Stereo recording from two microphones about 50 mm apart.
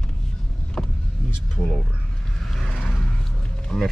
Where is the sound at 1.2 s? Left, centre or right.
Centre.